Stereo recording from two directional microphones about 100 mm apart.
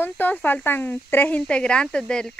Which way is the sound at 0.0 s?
15° left (ahead or behind).